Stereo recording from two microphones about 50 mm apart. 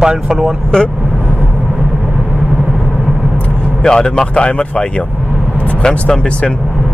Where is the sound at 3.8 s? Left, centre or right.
Centre.